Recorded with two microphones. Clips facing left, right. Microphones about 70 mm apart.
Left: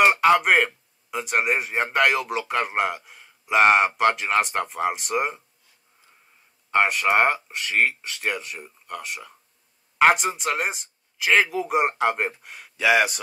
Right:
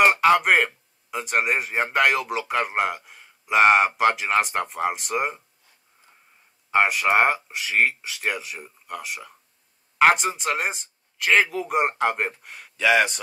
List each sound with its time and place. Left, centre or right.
0.0 s a man's voice: centre
6.7 s a man's voice: centre